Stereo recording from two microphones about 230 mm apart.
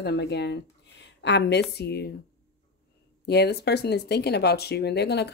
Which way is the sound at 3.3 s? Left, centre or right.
Left.